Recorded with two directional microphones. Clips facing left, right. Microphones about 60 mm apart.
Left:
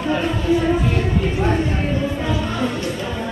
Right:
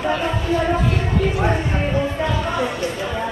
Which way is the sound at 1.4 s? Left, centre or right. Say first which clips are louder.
Left 1 dB; centre.